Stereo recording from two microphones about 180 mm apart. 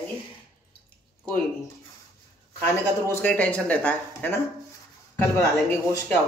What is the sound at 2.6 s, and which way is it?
A man's voice, 10° left (ahead or behind).